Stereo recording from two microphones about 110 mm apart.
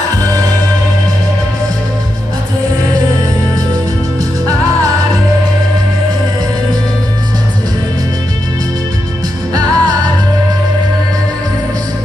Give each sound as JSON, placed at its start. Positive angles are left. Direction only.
{"t": 9.5, "sound": "music", "side_deg": -35}